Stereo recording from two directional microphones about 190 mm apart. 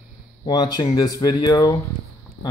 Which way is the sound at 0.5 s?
20° left (ahead or behind).